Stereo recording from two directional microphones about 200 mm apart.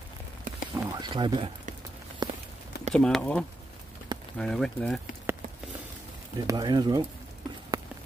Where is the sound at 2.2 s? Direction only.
20° right (ahead or behind).